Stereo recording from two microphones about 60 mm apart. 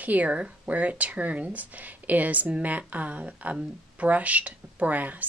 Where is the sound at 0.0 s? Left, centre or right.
Right.